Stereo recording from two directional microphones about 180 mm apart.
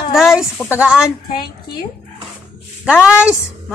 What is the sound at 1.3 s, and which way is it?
Speech, 25° left (ahead or behind).